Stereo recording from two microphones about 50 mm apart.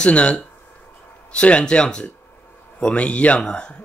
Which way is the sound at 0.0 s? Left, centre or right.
Left.